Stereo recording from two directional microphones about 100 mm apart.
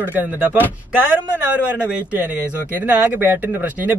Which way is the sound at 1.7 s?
15° right (ahead or behind).